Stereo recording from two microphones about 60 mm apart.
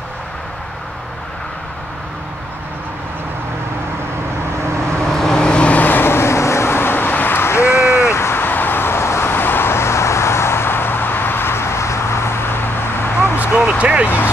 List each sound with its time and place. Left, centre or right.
5.1 s vehicle: centre; by 13.3 s left
13.6 s vehicle: centre
14.0 s a sound: left